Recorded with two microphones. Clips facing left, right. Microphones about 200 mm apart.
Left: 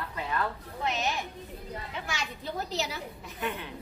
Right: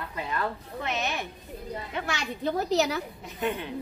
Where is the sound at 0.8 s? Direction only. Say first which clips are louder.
Even; 60° right (ahead or behind).